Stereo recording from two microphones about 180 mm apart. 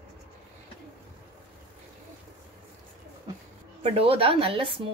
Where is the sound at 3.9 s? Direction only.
30° right (ahead or behind).